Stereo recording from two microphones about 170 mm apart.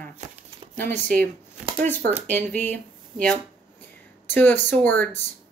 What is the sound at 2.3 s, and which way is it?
A woman's voice, 10° left (ahead or behind).